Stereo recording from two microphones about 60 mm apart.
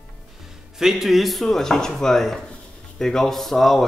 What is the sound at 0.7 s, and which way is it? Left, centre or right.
Speech, centre.